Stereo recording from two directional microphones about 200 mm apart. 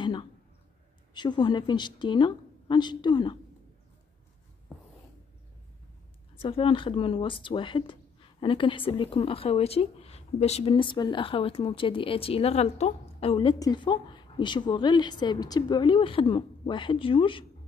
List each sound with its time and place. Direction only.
0.0 s a sound: 25° left (ahead or behind)
1.1 s speech: 20° left (ahead or behind)
6.4 s speech: 25° left (ahead or behind)